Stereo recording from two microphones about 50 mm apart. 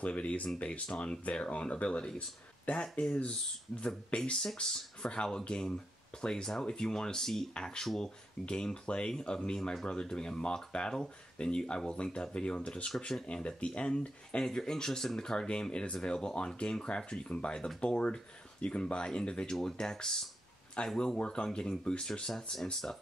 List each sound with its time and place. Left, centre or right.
0.0 s speech: left
9.6 s speech: centre; by 14.4 s left
14.4 s speech: centre
22.3 s speech: centre